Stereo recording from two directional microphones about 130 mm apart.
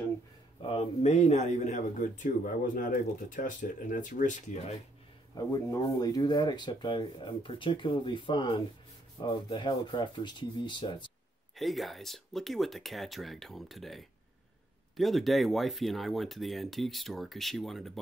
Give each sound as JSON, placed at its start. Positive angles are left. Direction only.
{"t": 0.6, "sound": "speech", "side_deg": 45}
{"t": 5.3, "sound": "speech", "side_deg": 25}
{"t": 11.5, "sound": "speech", "side_deg": 0}